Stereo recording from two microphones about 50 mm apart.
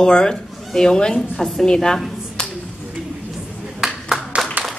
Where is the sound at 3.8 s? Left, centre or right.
Centre.